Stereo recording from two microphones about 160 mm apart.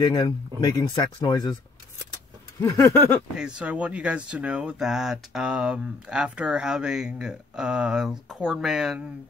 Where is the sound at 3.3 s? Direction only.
5° right (ahead or behind).